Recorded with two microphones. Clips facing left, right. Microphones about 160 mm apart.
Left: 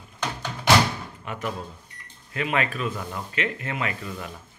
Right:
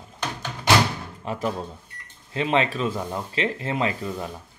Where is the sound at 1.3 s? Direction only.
35° right (ahead or behind).